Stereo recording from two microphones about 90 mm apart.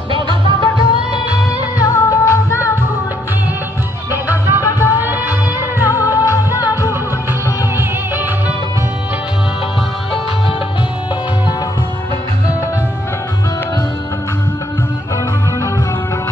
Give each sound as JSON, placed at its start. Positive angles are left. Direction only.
{"t": 0.6, "sound": "music", "side_deg": 50}
{"t": 4.1, "sound": "music", "side_deg": -25}
{"t": 4.6, "sound": "music", "side_deg": 35}
{"t": 5.0, "sound": "music", "side_deg": -20}
{"t": 6.1, "sound": "music", "side_deg": 40}